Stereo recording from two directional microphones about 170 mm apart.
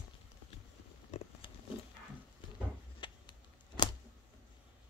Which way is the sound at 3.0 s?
30° left (ahead or behind).